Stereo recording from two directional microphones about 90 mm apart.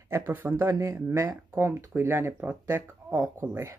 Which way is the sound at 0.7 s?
35° right (ahead or behind).